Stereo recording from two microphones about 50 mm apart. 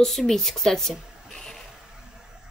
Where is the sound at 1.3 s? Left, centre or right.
Centre.